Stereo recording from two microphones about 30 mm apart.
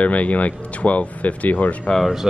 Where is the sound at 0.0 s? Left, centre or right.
Left.